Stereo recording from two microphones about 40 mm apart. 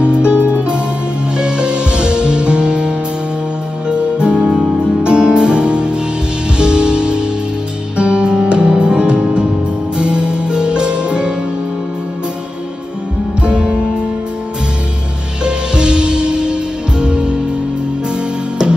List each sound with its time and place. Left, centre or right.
0.0 s music: right
3.9 s music: right
13.4 s music: right
15.4 s music: right